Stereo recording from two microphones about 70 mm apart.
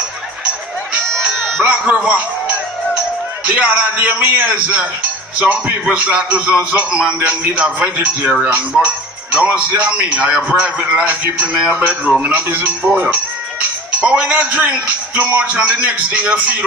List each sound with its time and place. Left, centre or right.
1.0 s music: centre
2.0 s speech: centre
3.4 s music: centre
3.9 s a man's voice: right
5.4 s music: centre
11.7 s a man's voice: right